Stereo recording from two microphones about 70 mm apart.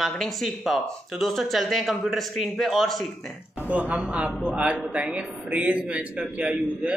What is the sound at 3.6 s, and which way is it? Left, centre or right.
A man's voice, right.